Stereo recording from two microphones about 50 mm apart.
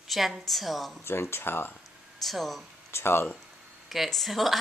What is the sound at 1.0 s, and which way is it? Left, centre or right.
Speech, left.